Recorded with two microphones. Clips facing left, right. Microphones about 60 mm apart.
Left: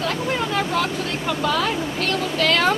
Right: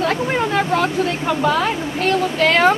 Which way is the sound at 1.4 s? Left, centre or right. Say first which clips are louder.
Right 3 dB; centre.